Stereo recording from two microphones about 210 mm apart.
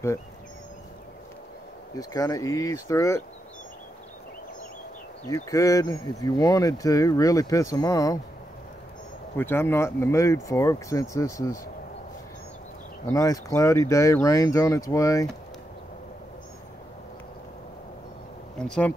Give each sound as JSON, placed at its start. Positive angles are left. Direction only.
{"t": 2.0, "sound": "speech", "side_deg": 15}
{"t": 5.3, "sound": "speech", "side_deg": 15}
{"t": 9.4, "sound": "speech", "side_deg": 10}
{"t": 13.0, "sound": "speech", "side_deg": 15}
{"t": 18.6, "sound": "speech", "side_deg": 5}